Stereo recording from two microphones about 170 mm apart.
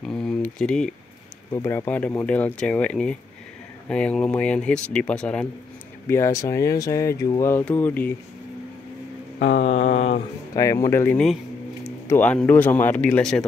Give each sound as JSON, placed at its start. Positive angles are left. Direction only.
{"t": 0.1, "sound": "a sound", "side_deg": 5}
{"t": 1.5, "sound": "speech", "side_deg": 15}
{"t": 6.0, "sound": "speech", "side_deg": 15}
{"t": 9.5, "sound": "mantra", "side_deg": 40}
{"t": 10.5, "sound": "a man's voice", "side_deg": 20}